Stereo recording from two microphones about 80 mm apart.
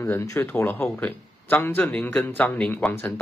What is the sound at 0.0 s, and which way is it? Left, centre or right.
Speech, left.